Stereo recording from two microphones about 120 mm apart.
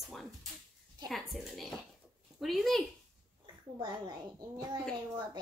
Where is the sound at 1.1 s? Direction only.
Centre (ahead or behind).